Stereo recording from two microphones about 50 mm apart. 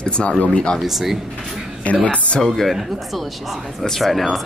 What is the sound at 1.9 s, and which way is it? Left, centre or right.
Speech, left.